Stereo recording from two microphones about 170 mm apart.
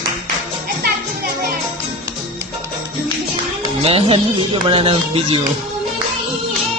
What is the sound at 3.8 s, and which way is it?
Music, 35° right (ahead or behind).